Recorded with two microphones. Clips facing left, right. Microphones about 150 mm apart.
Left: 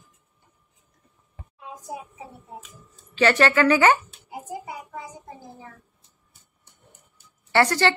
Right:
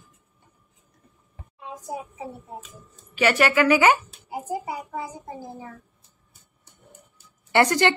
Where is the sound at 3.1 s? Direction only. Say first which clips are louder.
Left 1 dB; 10° right (ahead or behind).